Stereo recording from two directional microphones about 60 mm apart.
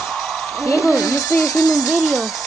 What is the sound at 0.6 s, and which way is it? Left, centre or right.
Speech, left.